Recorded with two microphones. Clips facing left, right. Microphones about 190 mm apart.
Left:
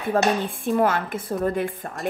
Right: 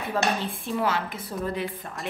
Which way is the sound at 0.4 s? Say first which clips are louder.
Left 7 dB; 50° left (ahead or behind).